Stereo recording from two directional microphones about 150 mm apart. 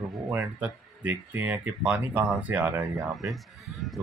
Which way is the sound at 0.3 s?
10° right (ahead or behind).